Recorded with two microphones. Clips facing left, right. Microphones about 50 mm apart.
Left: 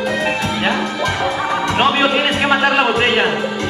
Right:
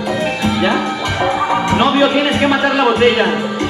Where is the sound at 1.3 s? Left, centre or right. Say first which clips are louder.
Right 3 dB; centre.